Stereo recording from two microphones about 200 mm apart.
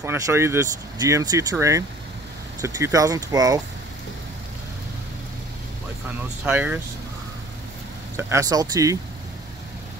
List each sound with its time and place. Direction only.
0.0 s speech: 10° right (ahead or behind)
6.4 s speech: 5° right (ahead or behind)
8.2 s speech: 15° right (ahead or behind)